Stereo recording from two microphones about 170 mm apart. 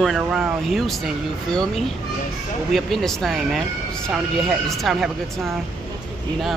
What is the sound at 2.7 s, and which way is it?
Speech, centre (ahead or behind).